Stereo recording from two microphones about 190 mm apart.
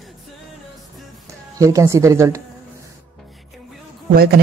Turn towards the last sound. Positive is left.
turn(degrees=-55)  # may be behind; listen again after turning